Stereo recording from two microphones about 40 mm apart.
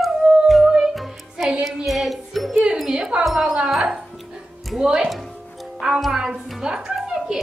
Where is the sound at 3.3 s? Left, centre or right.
Centre.